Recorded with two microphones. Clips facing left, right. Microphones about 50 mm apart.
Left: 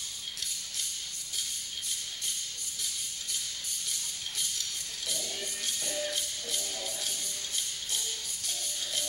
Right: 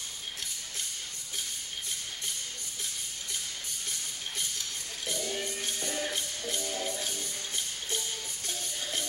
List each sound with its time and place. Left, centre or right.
5.0 s music: right